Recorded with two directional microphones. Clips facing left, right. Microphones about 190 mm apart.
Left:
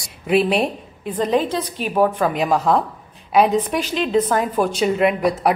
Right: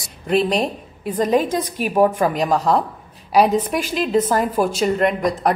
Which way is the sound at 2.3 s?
Centre (ahead or behind).